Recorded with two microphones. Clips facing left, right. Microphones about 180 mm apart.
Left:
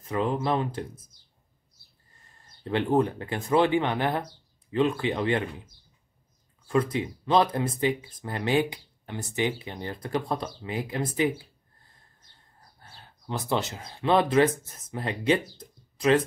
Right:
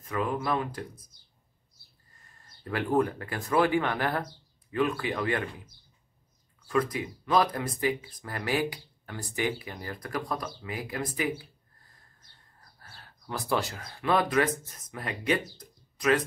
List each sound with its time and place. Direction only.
0.0 s speech: 30° left (ahead or behind)
2.6 s speech: 25° left (ahead or behind)
6.7 s speech: 25° left (ahead or behind)
12.7 s speech: 25° left (ahead or behind)